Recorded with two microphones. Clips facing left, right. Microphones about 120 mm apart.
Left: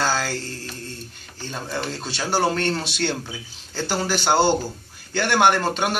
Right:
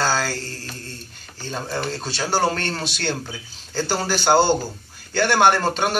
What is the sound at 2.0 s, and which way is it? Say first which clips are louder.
Speech: even; 15° left (ahead or behind).